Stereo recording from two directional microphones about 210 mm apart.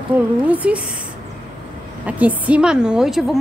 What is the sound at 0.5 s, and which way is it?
Speech, 5° right (ahead or behind).